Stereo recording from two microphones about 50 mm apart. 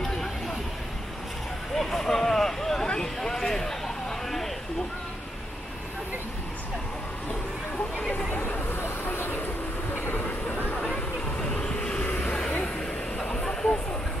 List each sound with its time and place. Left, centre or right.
1.8 s vehicle: centre
3.2 s a sound: centre
8.5 s vehicle: left
9.9 s train: left
11.6 s vehicle: centre
12.1 s vehicle: left
13.2 s vehicle: centre